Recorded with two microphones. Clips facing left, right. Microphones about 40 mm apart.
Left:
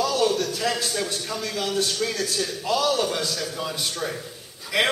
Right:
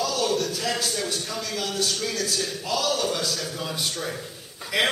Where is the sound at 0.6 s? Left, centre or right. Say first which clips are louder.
Left 2 dB; centre.